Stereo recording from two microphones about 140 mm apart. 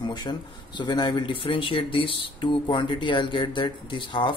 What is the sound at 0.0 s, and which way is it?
A man's voice, 30° left (ahead or behind).